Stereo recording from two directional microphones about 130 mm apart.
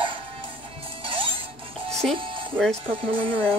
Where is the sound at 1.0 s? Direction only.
40° right (ahead or behind).